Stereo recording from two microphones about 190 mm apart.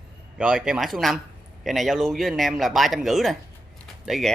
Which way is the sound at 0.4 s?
5° right (ahead or behind).